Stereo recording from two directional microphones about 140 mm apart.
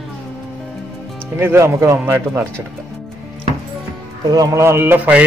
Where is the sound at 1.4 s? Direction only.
20° right (ahead or behind).